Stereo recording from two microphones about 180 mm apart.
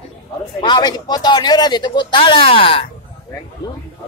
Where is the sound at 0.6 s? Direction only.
25° left (ahead or behind).